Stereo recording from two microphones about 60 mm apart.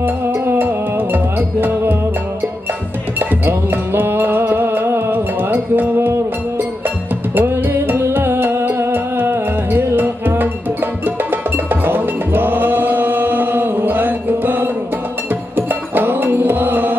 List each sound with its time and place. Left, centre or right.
0.0 s music: right
3.2 s music: right
7.3 s music: right